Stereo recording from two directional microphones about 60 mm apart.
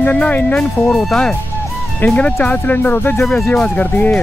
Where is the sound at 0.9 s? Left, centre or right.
Centre.